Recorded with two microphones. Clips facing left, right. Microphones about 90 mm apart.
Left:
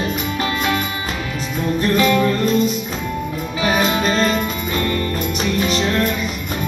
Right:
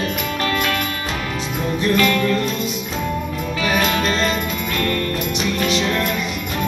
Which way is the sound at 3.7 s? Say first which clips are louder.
Left 1 dB; 20° left (ahead or behind).